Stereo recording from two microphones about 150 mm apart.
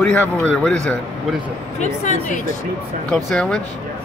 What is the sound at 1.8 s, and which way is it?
Speech, 50° left (ahead or behind).